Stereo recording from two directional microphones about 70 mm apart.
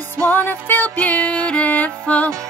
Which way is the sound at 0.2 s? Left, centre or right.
Left.